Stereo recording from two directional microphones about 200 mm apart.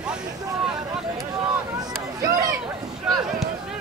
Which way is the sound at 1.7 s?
15° right (ahead or behind).